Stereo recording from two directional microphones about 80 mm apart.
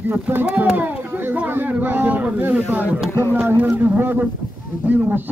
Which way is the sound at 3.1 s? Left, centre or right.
Left.